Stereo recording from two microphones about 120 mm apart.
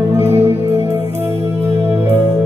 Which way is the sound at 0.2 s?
20° right (ahead or behind).